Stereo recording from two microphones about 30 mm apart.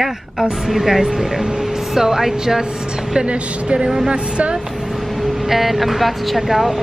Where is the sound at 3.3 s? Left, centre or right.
Right.